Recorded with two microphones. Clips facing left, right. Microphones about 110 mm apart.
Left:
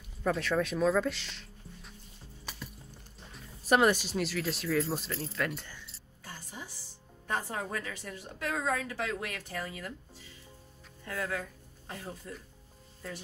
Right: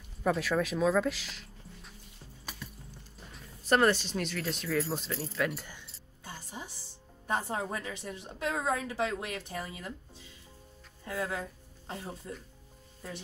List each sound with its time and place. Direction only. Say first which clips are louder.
0.2 s speech: right 1 dB; 5° right (ahead or behind)
3.3 s speech: left 1 dB; 10° left (ahead or behind)
6.2 s music: right 2 dB; 25° right (ahead or behind)
7.2 s speech: right 2 dB; 25° right (ahead or behind)